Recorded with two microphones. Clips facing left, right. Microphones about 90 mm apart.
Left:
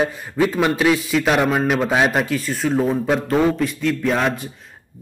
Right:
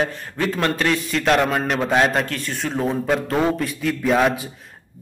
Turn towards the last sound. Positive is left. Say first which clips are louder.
# right 2 dB
turn(degrees=-5)  # may be behind; listen again after turning